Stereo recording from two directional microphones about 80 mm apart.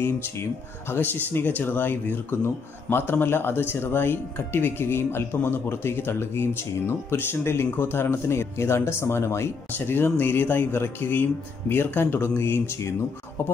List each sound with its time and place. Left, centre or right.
0.0 s speech: left